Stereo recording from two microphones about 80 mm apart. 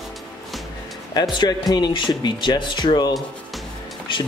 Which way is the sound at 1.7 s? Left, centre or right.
Left.